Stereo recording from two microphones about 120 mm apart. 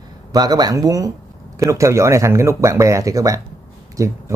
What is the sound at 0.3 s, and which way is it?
Speech, 35° right (ahead or behind).